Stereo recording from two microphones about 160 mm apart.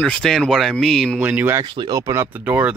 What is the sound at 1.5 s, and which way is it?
Speech, 30° right (ahead or behind).